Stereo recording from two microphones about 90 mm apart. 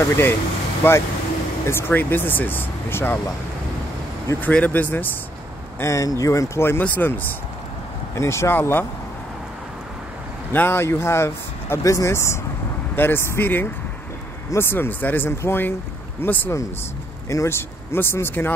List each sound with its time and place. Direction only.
0.1 s speech: 25° left (ahead or behind)
4.4 s speech: 15° left (ahead or behind)
5.8 s speech: 35° left (ahead or behind)
6.8 s speech: 20° left (ahead or behind)
8.2 s speech: 30° left (ahead or behind)
10.5 s speech: 25° left (ahead or behind)